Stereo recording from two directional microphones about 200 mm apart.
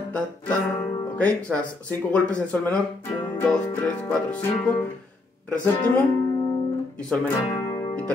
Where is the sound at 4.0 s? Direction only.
5° left (ahead or behind).